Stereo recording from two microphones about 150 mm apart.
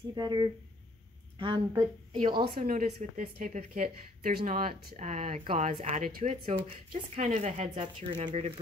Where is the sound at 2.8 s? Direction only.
45° right (ahead or behind).